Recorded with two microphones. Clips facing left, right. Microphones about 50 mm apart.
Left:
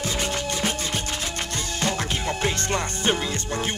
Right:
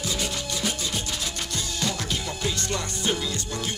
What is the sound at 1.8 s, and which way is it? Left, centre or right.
Music, left.